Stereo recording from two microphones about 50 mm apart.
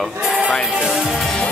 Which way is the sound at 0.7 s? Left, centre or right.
Centre.